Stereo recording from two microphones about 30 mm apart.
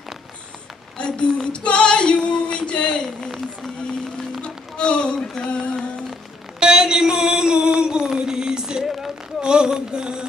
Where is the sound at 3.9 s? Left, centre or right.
Left.